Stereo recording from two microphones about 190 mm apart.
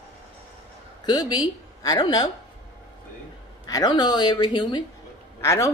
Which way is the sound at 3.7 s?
20° left (ahead or behind).